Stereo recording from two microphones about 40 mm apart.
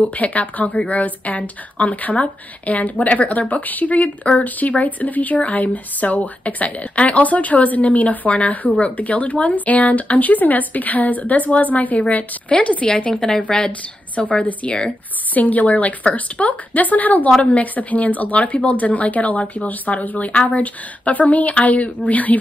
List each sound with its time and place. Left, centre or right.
0.2 s speech: left
4.6 s speech: left
13.7 s a woman's voice: left